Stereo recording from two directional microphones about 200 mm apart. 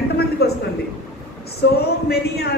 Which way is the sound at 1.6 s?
55° left (ahead or behind).